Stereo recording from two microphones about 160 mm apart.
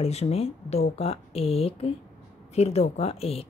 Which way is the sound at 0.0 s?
40° left (ahead or behind).